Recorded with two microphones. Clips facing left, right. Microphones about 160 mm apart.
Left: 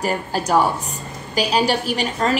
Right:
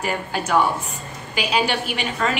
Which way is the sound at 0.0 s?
40° left (ahead or behind).